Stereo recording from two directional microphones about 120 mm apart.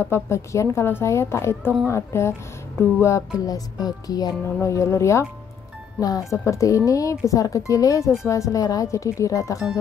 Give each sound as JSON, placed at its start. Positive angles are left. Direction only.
{"t": 0.0, "sound": "a woman's voice", "side_deg": 20}